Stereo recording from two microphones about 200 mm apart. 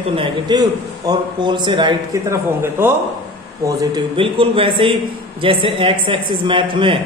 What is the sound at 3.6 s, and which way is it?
A man's voice, 25° right (ahead or behind).